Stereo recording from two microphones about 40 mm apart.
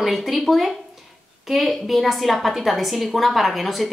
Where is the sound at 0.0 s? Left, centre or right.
Centre.